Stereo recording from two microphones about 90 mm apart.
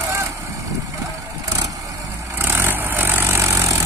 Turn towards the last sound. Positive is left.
turn(degrees=-35)  # may be behind; listen again after turning